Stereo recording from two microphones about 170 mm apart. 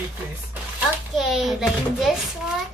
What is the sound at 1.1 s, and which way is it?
Speech, centre (ahead or behind).